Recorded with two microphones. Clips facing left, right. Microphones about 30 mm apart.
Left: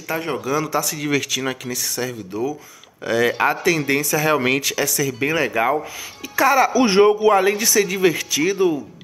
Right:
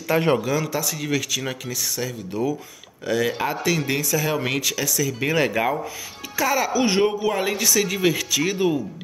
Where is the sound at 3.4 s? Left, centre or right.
Centre.